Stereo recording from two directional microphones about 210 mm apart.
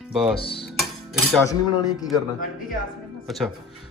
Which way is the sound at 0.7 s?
Centre (ahead or behind).